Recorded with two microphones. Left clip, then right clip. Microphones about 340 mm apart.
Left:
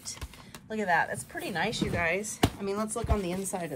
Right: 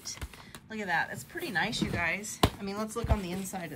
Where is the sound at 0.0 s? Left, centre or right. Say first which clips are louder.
Even; centre.